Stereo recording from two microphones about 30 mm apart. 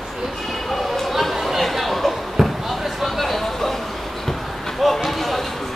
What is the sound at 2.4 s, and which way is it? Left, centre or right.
Basketball bounce, centre.